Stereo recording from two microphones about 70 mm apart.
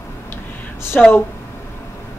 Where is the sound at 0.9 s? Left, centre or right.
Centre.